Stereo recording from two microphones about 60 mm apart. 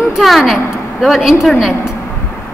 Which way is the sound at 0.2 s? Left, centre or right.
Centre.